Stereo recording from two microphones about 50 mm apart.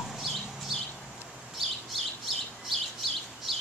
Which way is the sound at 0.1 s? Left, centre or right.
Centre.